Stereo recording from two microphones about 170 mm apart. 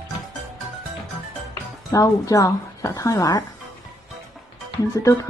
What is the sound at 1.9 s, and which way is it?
A woman's voice, 20° left (ahead or behind).